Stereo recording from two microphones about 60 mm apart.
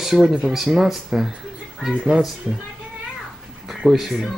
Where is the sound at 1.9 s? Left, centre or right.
Centre.